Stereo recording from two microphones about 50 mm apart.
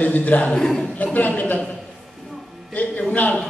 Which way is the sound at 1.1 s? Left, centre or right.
Left.